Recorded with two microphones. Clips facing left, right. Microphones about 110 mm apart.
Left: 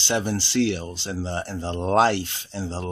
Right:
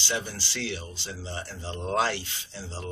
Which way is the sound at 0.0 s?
65° left (ahead or behind).